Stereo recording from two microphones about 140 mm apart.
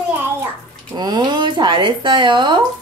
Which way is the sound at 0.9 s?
30° right (ahead or behind).